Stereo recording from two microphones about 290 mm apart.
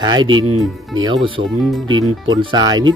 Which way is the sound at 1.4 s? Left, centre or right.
Right.